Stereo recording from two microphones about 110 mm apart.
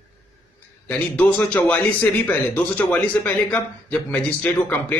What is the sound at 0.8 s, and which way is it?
Speech, 10° left (ahead or behind).